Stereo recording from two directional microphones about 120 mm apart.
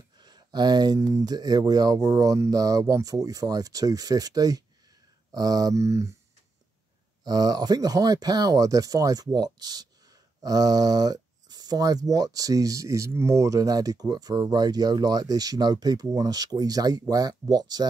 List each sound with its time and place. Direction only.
0.2 s speech: 35° right (ahead or behind)
7.2 s speech: 35° right (ahead or behind)